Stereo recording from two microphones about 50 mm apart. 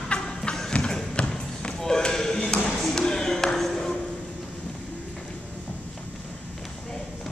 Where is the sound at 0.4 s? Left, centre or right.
Centre.